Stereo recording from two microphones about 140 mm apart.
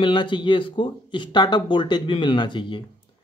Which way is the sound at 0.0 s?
35° left (ahead or behind).